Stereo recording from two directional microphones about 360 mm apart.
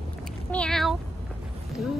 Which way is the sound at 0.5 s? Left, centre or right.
Centre.